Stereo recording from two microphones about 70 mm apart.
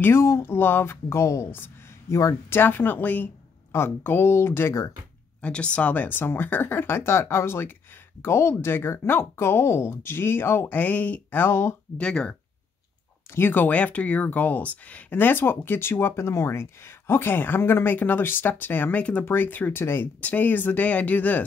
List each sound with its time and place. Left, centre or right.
0.0 s speech: left
2.5 s speech: left
5.4 s speech: centre; by 10.8 s left
10.8 s speech: left
12.0 s speech: centre
13.3 s speech: left